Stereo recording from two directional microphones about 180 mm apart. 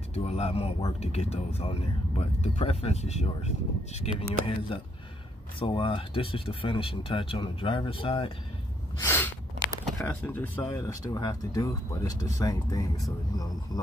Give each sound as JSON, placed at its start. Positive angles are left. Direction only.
{"t": 0.1, "sound": "speech", "side_deg": 35}
{"t": 9.0, "sound": "speech", "side_deg": 10}